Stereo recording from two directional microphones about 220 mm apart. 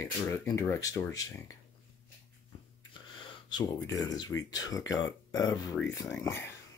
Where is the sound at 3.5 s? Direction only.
15° left (ahead or behind).